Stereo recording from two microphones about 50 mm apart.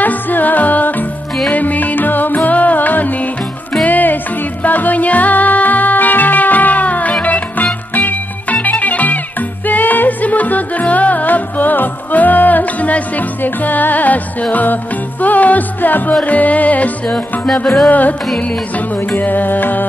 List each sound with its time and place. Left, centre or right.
0.0 s music: left